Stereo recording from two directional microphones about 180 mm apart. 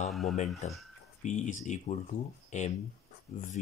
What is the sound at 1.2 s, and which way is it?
Speech, 40° left (ahead or behind).